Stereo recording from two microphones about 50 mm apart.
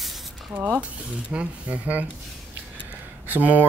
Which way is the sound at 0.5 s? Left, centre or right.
Right.